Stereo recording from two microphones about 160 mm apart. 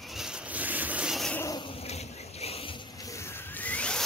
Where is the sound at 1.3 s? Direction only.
20° left (ahead or behind).